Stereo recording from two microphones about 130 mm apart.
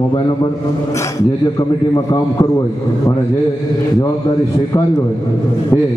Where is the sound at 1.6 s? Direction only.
25° left (ahead or behind).